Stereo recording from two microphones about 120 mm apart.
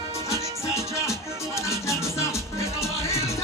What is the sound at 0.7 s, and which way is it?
Music, 25° left (ahead or behind).